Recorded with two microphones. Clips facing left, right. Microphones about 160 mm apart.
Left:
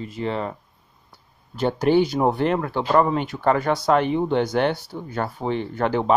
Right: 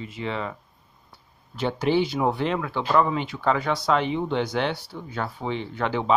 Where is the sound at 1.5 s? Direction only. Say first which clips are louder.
Left 4 dB; 45° left (ahead or behind).